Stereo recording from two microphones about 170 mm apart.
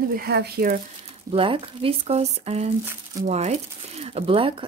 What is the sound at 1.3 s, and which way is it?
Speech, 30° right (ahead or behind).